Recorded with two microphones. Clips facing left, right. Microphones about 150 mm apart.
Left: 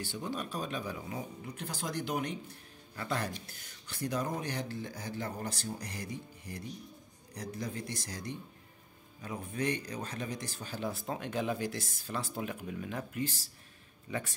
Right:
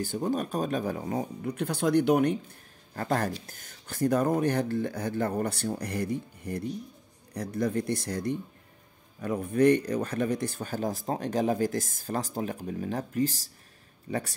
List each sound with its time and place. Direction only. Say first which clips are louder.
0.0 s speech: right 9 dB; 45° right (ahead or behind)
2.9 s speech: right 7 dB; 45° right (ahead or behind)